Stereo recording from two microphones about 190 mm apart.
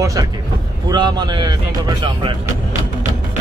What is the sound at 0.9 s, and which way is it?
A man's voice, 20° right (ahead or behind).